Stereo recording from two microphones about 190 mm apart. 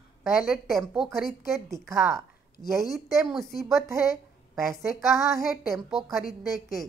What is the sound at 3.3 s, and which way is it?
Speech, centre (ahead or behind).